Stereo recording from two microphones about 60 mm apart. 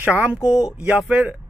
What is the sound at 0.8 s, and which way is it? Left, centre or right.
Speech, right.